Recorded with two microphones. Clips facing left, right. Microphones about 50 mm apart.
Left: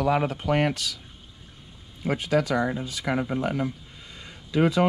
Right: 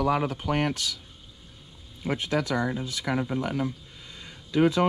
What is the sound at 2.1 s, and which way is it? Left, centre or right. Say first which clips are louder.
Speech: left 3 dB; left.